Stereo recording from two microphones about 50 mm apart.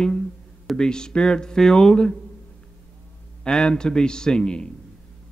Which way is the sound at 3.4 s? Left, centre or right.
Centre.